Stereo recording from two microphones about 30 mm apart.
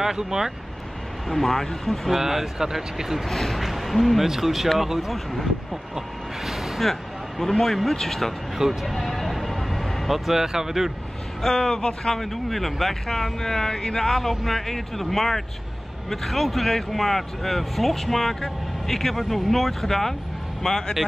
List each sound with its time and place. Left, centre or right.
0.2 s speech: centre
1.3 s speech: centre
2.0 s speech: centre
3.3 s speech: centre
5.1 s speech: centre
6.9 s vehicle: centre
7.6 s speech: centre
8.8 s vehicle: centre
10.1 s speech: centre
11.4 s speech: left
12.0 s speech: centre
13.1 s speech: centre
20.6 s speech: centre